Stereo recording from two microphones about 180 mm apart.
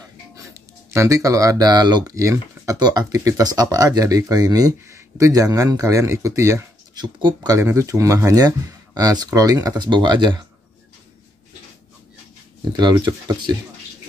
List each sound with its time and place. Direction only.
0.9 s speech: 15° right (ahead or behind)
12.7 s speech: 25° right (ahead or behind)